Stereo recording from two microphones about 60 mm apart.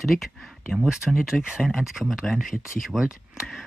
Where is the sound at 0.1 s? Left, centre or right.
Centre.